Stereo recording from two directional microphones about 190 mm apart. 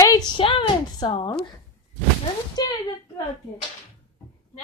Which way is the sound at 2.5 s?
20° left (ahead or behind).